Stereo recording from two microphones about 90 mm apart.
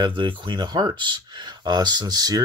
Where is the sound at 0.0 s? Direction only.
65° right (ahead or behind).